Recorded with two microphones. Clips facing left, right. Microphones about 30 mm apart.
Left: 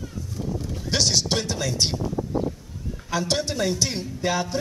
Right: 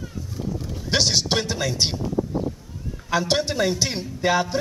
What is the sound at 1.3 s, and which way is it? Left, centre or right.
Speech, centre.